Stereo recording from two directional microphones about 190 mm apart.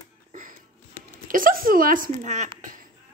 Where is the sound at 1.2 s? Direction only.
45° right (ahead or behind).